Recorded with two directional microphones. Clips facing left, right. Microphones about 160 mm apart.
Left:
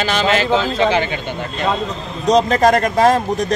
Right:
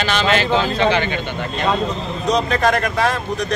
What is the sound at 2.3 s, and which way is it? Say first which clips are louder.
A man's voice: left 5 dB; 40° left (ahead or behind).